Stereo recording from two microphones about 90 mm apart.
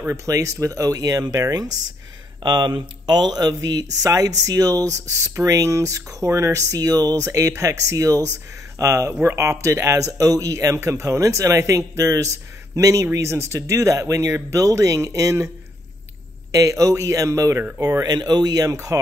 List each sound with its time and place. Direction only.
0.2 s speech: 35° right (ahead or behind)
2.4 s speech: 55° right (ahead or behind); by 15.5 s 35° right (ahead or behind)
16.5 s speech: 35° right (ahead or behind)